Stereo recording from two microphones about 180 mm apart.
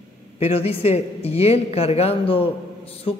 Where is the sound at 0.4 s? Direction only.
35° left (ahead or behind).